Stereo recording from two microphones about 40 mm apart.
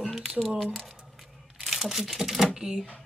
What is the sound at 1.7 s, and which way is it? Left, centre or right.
Speech, centre.